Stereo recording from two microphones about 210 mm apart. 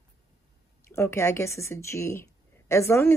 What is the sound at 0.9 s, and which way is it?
Speech, 10° left (ahead or behind).